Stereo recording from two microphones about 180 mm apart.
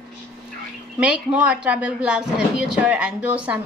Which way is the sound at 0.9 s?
5° right (ahead or behind).